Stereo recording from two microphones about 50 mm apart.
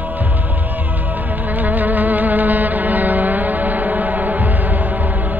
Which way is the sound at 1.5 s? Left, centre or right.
Right.